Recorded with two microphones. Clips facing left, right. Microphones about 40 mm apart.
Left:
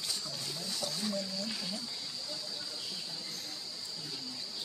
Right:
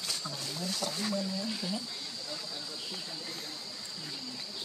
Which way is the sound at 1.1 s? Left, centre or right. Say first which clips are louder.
Right 3 dB; centre.